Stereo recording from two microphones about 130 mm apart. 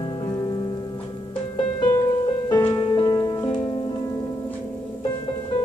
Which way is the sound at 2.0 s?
35° left (ahead or behind).